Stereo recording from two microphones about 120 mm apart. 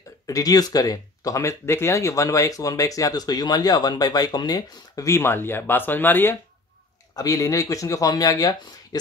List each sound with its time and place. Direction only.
0.3 s speech: 30° left (ahead or behind)
7.2 s speech: 30° left (ahead or behind)